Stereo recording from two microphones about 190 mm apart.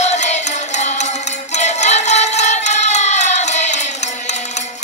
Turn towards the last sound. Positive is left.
turn(degrees=35)  # may be behind; listen again after turning